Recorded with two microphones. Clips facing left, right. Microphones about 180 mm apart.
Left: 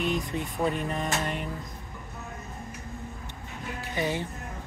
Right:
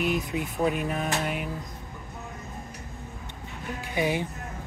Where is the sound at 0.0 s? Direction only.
5° right (ahead or behind).